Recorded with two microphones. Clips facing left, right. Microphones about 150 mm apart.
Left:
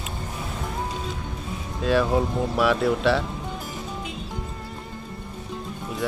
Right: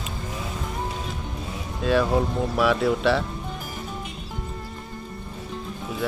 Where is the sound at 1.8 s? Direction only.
Centre (ahead or behind).